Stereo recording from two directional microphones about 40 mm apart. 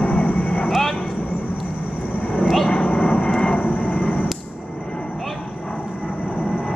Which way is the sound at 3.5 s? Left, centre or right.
Left.